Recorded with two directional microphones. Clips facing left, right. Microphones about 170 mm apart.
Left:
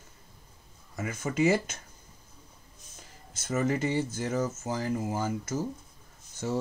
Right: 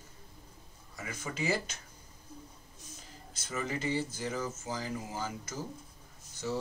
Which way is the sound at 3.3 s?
50° left (ahead or behind).